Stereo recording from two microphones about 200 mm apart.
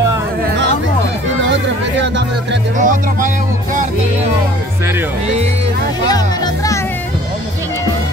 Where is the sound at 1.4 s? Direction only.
65° right (ahead or behind).